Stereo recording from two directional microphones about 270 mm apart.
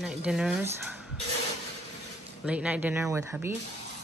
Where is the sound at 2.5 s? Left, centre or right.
Centre.